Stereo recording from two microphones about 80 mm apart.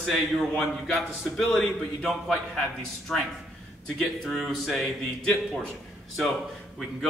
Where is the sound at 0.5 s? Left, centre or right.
Centre.